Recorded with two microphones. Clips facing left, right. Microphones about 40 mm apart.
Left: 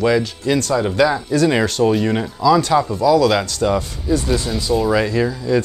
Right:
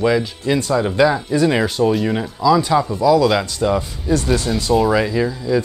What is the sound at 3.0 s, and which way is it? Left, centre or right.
Speech, right.